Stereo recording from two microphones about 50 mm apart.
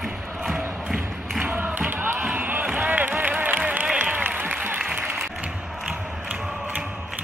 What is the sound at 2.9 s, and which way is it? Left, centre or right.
Music, right.